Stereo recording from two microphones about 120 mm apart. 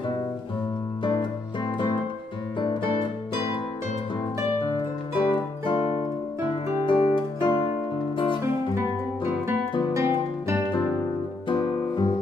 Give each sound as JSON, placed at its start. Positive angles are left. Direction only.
{"t": 2.6, "sound": "music", "side_deg": 45}
{"t": 4.6, "sound": "music", "side_deg": 45}
{"t": 9.9, "sound": "guitar", "side_deg": -20}
{"t": 11.4, "sound": "music", "side_deg": 40}